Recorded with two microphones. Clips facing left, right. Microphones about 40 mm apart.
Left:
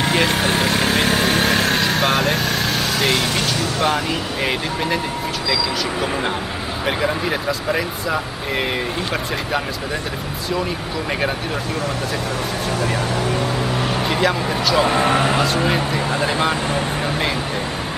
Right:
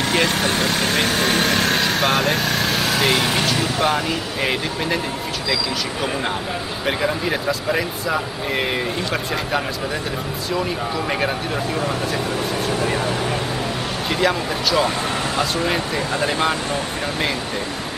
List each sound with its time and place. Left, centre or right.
0.0 s speech: centre
6.9 s speech: centre
14.0 s speech: centre
14.9 s speech: left
15.6 s speech: centre